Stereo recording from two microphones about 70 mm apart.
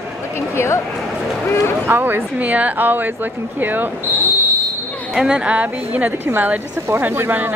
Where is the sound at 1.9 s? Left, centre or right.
Right.